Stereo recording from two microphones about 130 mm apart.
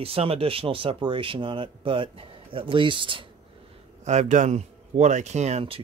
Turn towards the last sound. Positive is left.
turn(degrees=-55)  # may be behind; listen again after turning